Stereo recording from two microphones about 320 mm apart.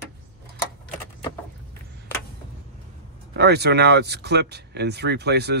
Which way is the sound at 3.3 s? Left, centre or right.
Right.